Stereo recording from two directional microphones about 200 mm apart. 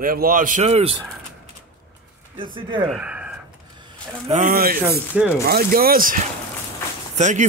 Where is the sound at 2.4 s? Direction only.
25° right (ahead or behind).